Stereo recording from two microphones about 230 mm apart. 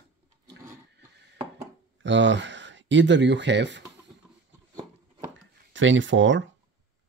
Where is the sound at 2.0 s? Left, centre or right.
Right.